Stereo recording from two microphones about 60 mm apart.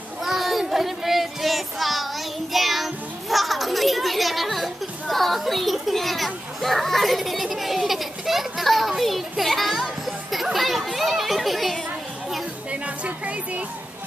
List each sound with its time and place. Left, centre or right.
0.2 s child singing: centre
2.5 s children playing: centre
10.3 s chatter: centre
12.8 s music: right